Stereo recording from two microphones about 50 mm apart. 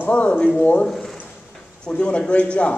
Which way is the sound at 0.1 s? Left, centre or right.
Left.